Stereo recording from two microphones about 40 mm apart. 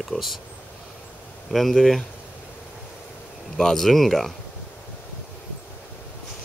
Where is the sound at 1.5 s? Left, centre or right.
Centre.